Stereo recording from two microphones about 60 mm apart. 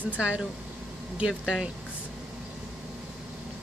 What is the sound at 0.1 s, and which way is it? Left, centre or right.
Speech, right.